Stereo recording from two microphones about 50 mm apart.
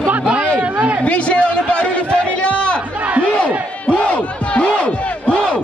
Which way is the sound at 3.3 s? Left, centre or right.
Left.